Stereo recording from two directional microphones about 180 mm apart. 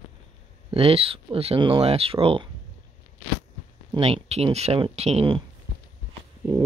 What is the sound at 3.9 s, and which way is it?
Speech, 35° right (ahead or behind).